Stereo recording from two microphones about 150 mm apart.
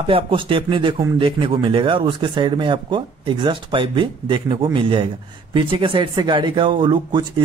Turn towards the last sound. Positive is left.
turn(degrees=-35)  # may be behind; listen again after turning